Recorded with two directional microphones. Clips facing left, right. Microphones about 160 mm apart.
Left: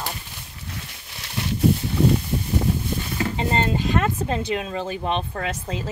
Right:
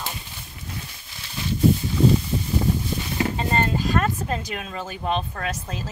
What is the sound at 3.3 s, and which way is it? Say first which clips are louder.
Speech: left 3 dB; 25° left (ahead or behind).